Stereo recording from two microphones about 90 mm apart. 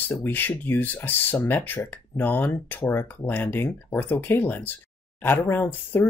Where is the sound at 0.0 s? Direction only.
20° left (ahead or behind).